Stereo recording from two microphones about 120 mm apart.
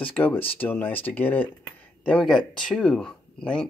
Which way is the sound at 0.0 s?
15° left (ahead or behind).